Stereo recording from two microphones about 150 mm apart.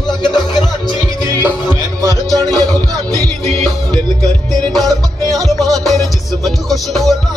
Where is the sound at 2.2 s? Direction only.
5° left (ahead or behind).